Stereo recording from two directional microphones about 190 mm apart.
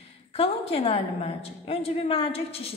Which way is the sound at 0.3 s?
30° left (ahead or behind).